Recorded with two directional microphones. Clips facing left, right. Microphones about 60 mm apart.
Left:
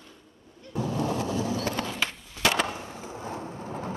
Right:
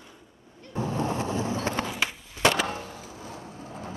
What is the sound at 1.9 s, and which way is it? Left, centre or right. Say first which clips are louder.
Skateboard: right 1 dB; centre.